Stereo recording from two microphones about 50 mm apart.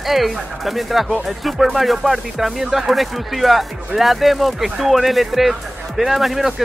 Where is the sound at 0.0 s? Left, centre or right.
Centre.